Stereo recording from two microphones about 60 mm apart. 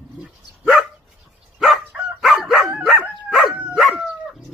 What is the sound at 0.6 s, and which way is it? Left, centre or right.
Dog, centre.